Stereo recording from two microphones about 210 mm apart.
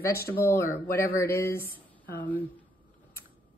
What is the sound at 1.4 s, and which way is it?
Speech, 45° left (ahead or behind).